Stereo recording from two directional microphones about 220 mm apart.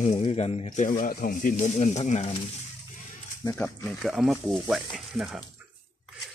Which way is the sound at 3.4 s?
10° left (ahead or behind).